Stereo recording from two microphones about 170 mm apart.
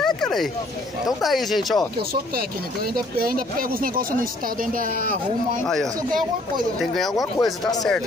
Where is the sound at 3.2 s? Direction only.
60° right (ahead or behind).